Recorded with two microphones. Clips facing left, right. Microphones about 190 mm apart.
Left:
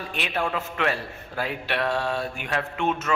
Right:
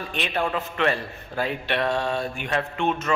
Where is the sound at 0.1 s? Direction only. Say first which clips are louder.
Right 2 dB; 5° left (ahead or behind).